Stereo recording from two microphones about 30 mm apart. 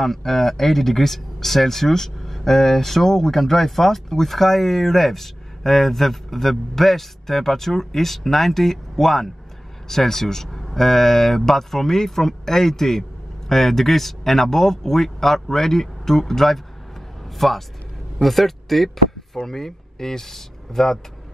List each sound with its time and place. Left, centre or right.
0.0 s speech: centre
19.3 s speech: centre